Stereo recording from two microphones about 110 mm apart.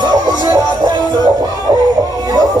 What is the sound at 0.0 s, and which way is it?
Music, 35° right (ahead or behind).